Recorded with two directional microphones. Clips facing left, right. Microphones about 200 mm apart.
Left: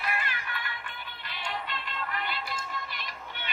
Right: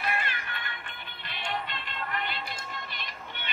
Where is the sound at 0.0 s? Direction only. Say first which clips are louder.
Right 1 dB; 25° right (ahead or behind).